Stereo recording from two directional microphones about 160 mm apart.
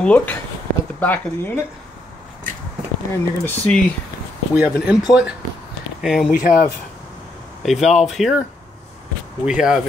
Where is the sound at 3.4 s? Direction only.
10° left (ahead or behind).